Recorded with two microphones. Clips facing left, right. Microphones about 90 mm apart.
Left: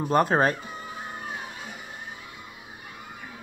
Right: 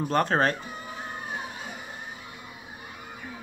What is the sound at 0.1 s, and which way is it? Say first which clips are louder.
Speech: left 3 dB; 10° left (ahead or behind).